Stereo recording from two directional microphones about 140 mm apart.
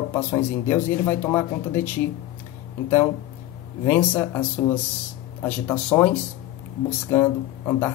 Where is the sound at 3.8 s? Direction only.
15° left (ahead or behind).